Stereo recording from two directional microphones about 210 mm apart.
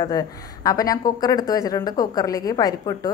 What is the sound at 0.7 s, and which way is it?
A woman's voice, 15° left (ahead or behind).